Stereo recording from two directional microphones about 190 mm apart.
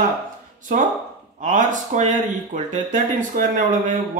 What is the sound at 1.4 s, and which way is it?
Speech, 40° right (ahead or behind).